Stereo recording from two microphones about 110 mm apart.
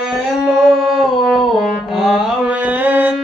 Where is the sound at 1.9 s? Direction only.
5° right (ahead or behind).